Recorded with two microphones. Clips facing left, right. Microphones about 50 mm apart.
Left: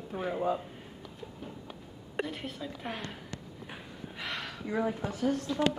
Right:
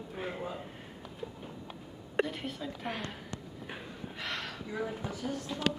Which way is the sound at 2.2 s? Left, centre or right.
Centre.